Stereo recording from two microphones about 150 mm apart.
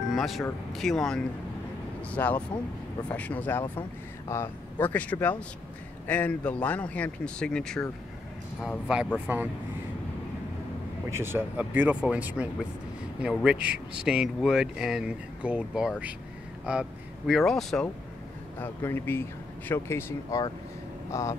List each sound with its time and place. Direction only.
0.1 s music: centre (ahead or behind)
0.7 s speech: centre (ahead or behind)
8.9 s speech: 5° right (ahead or behind)
11.1 s speech: 15° right (ahead or behind)
17.3 s speech: centre (ahead or behind)
18.6 s speech: 15° left (ahead or behind)